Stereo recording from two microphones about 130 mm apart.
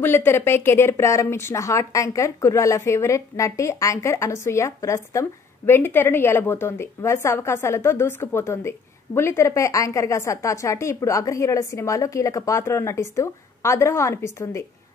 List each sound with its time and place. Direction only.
0.0 s a woman's voice: 15° left (ahead or behind)